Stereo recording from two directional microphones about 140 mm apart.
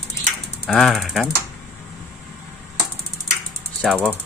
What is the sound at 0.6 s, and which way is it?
Speech, centre (ahead or behind).